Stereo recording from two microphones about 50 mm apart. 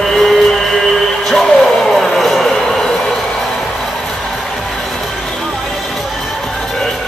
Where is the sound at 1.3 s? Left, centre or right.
Centre.